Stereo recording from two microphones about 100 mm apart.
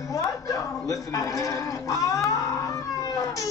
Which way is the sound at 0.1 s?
35° left (ahead or behind).